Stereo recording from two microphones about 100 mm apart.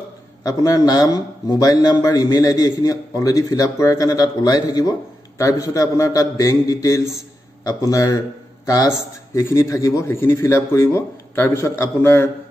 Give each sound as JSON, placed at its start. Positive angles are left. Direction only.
{"t": 0.4, "sound": "a man's voice", "side_deg": 35}